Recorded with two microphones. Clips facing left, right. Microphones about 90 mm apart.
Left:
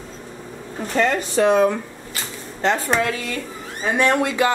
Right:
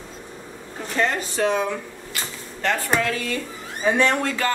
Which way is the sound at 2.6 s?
25° left (ahead or behind).